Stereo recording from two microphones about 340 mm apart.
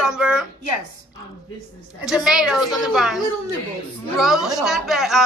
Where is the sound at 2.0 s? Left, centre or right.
Centre.